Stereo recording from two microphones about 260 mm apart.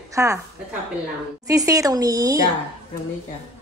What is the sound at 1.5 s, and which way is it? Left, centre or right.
Speech, centre.